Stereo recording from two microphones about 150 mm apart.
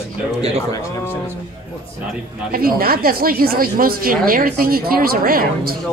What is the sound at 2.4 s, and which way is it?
Speech, 85° right.